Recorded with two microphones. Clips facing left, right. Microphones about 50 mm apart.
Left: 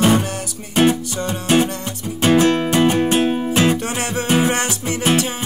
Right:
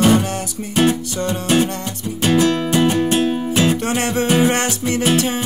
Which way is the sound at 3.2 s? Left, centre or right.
Centre.